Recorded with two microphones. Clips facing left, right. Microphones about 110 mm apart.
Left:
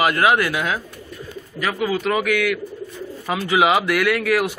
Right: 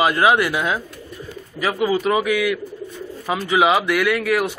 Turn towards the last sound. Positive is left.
turn(degrees=0)  # may be behind; listen again after turning